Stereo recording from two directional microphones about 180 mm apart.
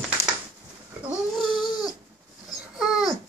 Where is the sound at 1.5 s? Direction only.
25° left (ahead or behind).